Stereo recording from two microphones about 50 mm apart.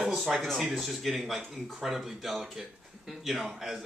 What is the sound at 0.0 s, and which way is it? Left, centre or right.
Speech, centre.